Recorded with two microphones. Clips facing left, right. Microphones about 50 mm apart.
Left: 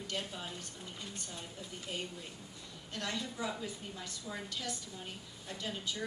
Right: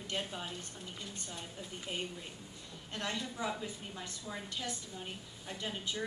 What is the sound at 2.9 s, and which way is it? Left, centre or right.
A woman's voice, right.